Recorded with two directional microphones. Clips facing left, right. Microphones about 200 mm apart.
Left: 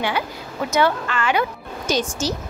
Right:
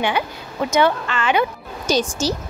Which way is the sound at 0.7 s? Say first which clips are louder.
Right 1 dB; 20° right (ahead or behind).